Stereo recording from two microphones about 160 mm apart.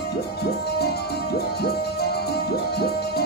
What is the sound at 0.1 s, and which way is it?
Music, 80° left.